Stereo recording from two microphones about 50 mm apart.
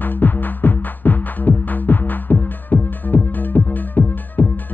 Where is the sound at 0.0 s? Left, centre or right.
Left.